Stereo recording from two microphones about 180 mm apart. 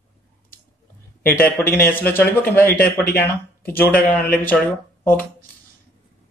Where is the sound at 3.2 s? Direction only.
10° left (ahead or behind).